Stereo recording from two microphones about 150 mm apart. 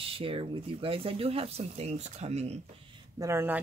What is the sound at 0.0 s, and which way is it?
Speech, 40° right (ahead or behind).